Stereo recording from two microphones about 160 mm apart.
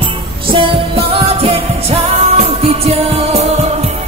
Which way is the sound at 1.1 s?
35° right (ahead or behind).